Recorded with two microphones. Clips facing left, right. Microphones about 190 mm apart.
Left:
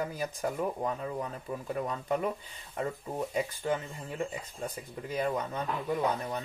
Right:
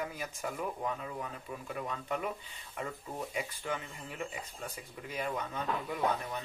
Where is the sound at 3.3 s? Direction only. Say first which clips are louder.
Left 7 dB; 35° left (ahead or behind).